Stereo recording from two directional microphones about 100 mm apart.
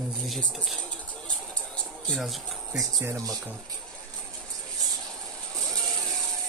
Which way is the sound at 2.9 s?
35° right (ahead or behind).